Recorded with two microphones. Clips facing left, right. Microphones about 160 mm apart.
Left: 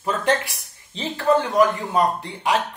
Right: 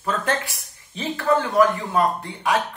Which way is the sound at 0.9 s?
20° left (ahead or behind).